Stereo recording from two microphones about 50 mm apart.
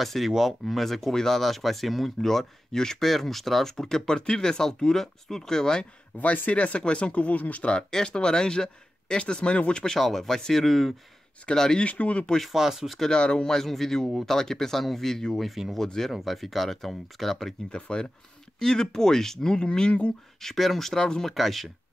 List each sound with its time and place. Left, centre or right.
0.0 s speech: centre
6.1 s speech: left
7.7 s speech: centre
9.9 s speech: centre
11.8 s speech: left
12.5 s speech: centre
13.0 s speech: centre
15.8 s speech: centre
17.6 s speech: centre
20.4 s speech: centre